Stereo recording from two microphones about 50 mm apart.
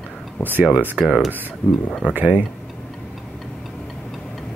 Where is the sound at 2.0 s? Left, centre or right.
Right.